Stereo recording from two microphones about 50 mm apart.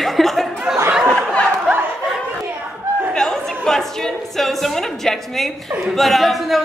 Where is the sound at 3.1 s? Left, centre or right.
Centre.